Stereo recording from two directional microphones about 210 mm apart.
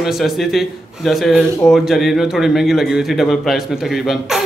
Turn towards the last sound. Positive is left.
turn(degrees=0)  # may be behind; listen again after turning